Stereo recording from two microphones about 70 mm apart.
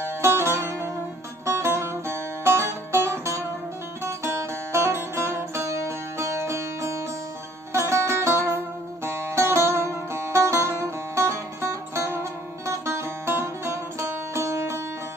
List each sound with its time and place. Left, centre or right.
0.2 s music: right